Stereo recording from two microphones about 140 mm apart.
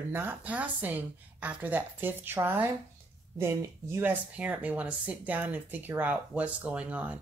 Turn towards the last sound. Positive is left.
turn(degrees=-10)  # may be behind; listen again after turning